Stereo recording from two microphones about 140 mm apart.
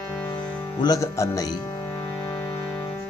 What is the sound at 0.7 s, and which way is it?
Speech, 25° left (ahead or behind).